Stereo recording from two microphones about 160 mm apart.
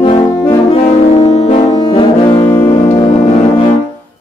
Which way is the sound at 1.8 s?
25° left (ahead or behind).